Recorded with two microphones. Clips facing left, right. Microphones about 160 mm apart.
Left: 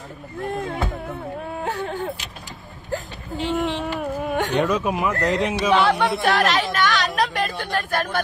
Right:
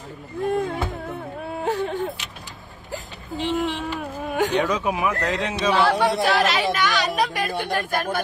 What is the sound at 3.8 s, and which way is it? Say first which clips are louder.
Carnatic music: left 3 dB; 10° left (ahead or behind).